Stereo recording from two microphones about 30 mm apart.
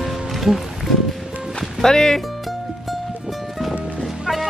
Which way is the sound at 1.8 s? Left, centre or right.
Left.